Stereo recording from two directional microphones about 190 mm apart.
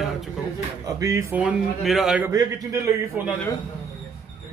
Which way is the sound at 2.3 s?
20° right (ahead or behind).